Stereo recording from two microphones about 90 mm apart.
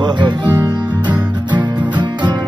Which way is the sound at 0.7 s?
55° right (ahead or behind).